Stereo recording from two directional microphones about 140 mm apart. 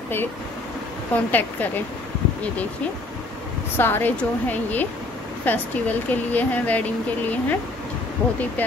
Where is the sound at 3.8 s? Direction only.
15° left (ahead or behind).